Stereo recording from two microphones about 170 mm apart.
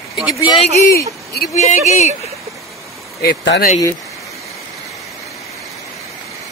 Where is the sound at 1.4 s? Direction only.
65° left (ahead or behind).